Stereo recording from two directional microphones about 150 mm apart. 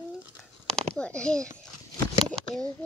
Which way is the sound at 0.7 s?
5° left (ahead or behind).